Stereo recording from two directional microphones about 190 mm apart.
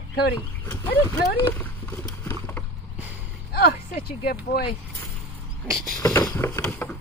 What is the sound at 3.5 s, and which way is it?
Speech, 55° left (ahead or behind).